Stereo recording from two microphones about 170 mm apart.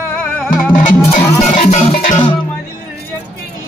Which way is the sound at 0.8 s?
45° left (ahead or behind).